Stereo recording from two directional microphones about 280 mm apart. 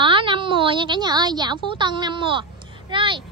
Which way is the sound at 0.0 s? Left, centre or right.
Centre.